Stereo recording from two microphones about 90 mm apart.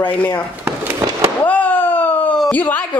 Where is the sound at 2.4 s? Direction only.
20° left (ahead or behind).